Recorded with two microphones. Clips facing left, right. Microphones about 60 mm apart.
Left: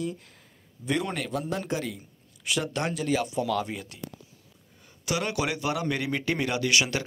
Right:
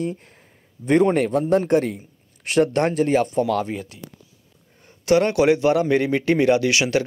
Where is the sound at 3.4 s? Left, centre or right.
Right.